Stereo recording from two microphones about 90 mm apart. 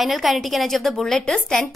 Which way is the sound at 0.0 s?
Centre (ahead or behind).